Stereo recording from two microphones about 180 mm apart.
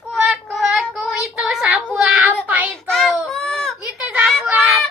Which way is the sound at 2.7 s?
5° left (ahead or behind).